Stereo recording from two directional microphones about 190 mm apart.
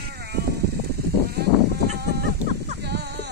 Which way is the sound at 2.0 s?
55° right (ahead or behind).